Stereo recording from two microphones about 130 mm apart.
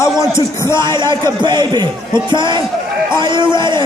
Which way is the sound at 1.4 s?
35° right (ahead or behind).